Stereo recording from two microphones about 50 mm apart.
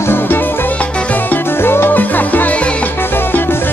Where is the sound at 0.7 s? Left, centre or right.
Left.